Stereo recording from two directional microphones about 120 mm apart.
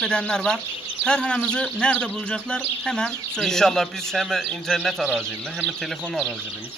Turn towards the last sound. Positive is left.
turn(degrees=0)  # may be behind; listen again after turning